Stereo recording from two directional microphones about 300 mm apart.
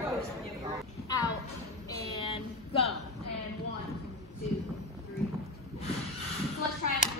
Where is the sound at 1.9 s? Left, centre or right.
Centre.